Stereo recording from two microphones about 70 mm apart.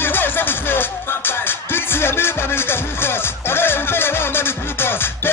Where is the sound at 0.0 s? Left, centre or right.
Left.